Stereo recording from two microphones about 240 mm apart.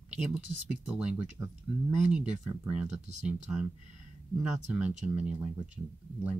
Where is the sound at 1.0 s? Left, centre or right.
Centre.